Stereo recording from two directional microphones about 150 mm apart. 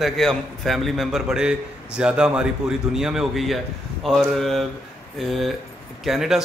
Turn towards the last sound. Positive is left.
turn(degrees=0)  # may be behind; listen again after turning